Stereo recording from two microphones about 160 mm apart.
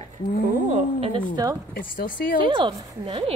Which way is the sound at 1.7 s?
60° left (ahead or behind).